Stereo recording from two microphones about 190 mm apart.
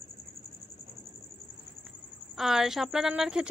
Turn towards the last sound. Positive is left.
turn(degrees=-5)  # may be behind; listen again after turning